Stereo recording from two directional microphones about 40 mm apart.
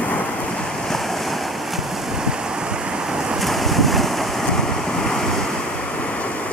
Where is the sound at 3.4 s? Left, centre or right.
Centre.